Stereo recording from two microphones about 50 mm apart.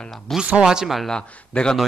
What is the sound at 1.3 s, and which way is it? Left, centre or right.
Speech, centre.